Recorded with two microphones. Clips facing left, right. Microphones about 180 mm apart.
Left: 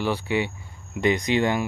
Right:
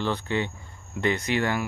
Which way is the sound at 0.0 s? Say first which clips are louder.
Left 2 dB; 10° left (ahead or behind).